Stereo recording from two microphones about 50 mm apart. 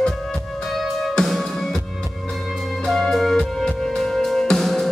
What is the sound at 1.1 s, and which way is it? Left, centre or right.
Music, centre.